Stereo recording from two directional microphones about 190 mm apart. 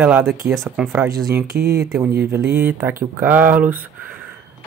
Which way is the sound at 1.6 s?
55° right (ahead or behind).